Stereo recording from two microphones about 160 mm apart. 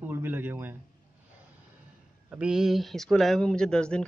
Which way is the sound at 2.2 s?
5° right (ahead or behind).